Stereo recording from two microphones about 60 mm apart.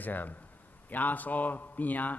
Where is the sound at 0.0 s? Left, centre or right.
Left.